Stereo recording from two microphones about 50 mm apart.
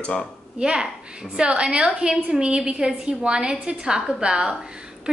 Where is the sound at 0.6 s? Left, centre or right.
Centre.